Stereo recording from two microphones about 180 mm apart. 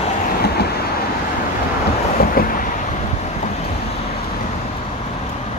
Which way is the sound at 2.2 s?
55° left (ahead or behind).